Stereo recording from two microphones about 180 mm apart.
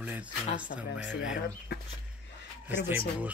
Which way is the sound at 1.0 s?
5° right (ahead or behind).